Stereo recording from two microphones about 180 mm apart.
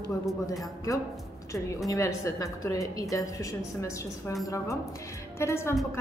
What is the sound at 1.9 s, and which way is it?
A woman's voice, 15° left (ahead or behind).